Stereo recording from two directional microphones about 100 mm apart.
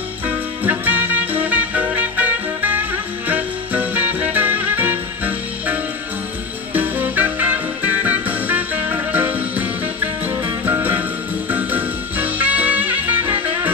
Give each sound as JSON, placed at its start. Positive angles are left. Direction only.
{"t": 0.7, "sound": "music", "side_deg": -20}